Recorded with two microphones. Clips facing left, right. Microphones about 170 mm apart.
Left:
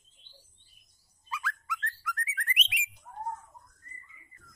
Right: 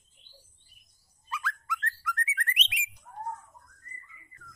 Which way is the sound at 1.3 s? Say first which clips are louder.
Right 1 dB; 5° left (ahead or behind).